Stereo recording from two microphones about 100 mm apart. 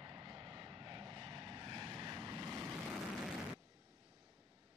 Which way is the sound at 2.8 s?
5° right (ahead or behind).